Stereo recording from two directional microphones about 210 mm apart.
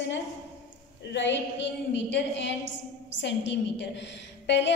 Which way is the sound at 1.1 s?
60° left (ahead or behind).